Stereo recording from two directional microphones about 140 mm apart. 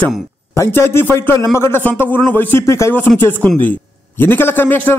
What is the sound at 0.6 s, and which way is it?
A man's voice, 15° left (ahead or behind).